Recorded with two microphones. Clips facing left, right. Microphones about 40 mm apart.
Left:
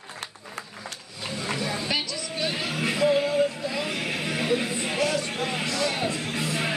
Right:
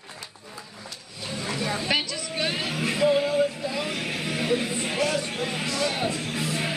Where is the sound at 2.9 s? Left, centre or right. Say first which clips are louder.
Right 1 dB; centre.